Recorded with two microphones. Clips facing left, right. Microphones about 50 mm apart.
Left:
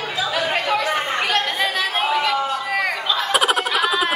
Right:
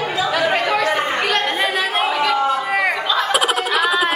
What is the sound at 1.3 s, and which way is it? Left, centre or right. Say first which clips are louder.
Chatter: right 2 dB; centre.